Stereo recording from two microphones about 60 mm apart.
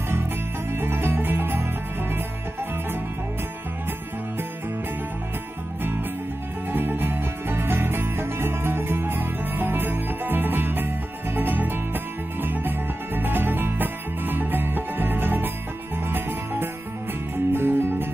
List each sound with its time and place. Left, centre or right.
0.7 s music: right
6.7 s music: right